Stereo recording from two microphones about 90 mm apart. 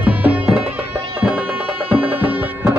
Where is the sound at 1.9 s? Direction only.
20° right (ahead or behind).